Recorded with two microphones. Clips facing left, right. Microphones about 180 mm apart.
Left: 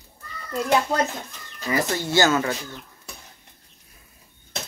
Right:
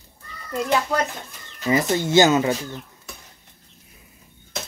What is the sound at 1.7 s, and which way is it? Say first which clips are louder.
Speech: right 4 dB; 20° right (ahead or behind).